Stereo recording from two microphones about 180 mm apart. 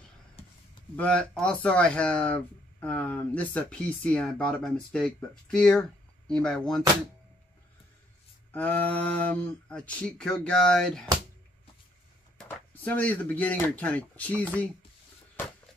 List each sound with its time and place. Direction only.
0.9 s speech: 5° left (ahead or behind)
8.5 s speech: 10° left (ahead or behind)
12.4 s speech: 10° left (ahead or behind)